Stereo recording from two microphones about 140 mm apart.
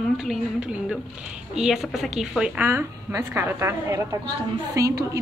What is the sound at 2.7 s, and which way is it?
A woman's voice, 20° right (ahead or behind).